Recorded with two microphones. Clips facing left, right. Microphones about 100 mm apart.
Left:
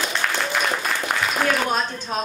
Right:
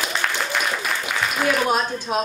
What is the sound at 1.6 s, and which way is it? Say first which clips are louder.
Speech: right 3 dB; 10° right (ahead or behind).